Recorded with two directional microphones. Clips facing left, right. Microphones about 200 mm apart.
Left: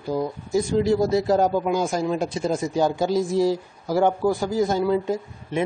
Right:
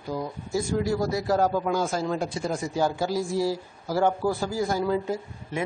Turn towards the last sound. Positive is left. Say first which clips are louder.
# left 5 dB
turn(degrees=20)  # may be behind; listen again after turning